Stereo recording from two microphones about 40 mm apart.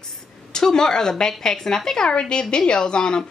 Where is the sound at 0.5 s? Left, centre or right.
Centre.